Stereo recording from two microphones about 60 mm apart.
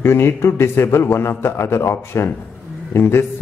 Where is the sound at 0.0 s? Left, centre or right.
Left.